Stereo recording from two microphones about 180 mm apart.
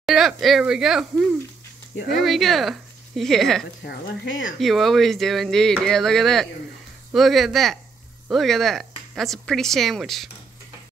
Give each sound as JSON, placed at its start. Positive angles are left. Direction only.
{"t": 0.0, "sound": "speech", "side_deg": 0}
{"t": 3.8, "sound": "speech", "side_deg": 60}
{"t": 4.6, "sound": "speech", "side_deg": 0}